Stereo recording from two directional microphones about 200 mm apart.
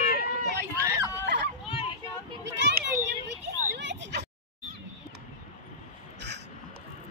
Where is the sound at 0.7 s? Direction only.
15° right (ahead or behind).